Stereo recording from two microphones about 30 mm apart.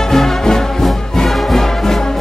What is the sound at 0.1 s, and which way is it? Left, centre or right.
Music, centre.